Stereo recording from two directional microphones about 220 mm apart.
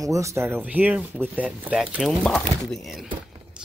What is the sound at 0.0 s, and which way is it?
Speech, 15° right (ahead or behind).